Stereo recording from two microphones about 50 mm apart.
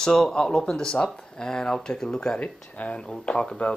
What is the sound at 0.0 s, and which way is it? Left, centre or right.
Speech, centre.